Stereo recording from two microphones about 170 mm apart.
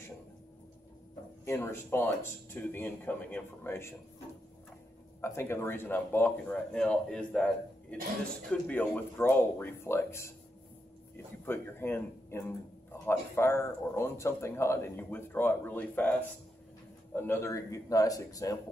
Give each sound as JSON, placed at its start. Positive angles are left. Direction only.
{"t": 1.4, "sound": "speech", "side_deg": 15}
{"t": 5.2, "sound": "speech", "side_deg": 15}
{"t": 11.4, "sound": "a man's voice", "side_deg": 15}